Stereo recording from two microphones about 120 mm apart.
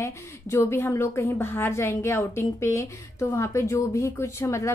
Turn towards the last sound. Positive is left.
turn(degrees=25)  # may be behind; listen again after turning